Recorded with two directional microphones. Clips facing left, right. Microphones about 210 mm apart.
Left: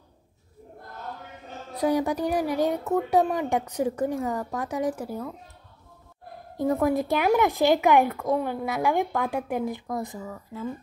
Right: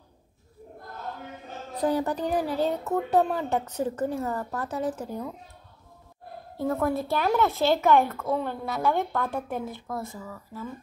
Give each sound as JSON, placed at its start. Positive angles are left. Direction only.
{"t": 1.7, "sound": "speech", "side_deg": 10}
{"t": 6.5, "sound": "speech", "side_deg": 15}